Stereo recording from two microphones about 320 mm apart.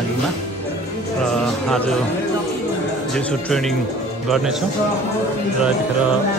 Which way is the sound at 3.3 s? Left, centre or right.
Centre.